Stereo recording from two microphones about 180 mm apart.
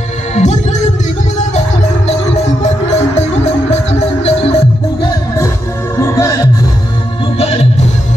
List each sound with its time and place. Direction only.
0.3 s music: 40° left (ahead or behind)
3.2 s music: 40° left (ahead or behind)
5.9 s music: 15° left (ahead or behind)
7.3 s music: 35° left (ahead or behind)